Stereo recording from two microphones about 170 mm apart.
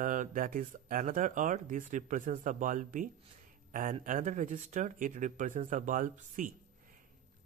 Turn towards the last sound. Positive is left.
turn(degrees=-50)  # may be behind; listen again after turning